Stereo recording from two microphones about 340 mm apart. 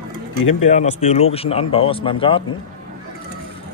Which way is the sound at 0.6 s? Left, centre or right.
Centre.